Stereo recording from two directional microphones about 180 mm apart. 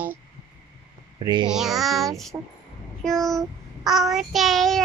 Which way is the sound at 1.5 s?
Centre (ahead or behind).